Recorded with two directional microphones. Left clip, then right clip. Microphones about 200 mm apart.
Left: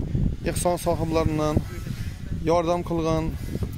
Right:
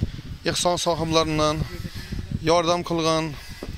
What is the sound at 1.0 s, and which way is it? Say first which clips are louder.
Speech: right 3 dB; centre (ahead or behind).